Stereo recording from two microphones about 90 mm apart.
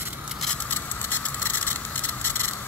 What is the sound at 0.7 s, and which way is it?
Vehicle, 20° left (ahead or behind).